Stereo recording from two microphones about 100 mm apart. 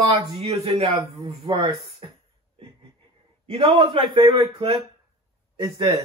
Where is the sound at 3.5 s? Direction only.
60° right (ahead or behind).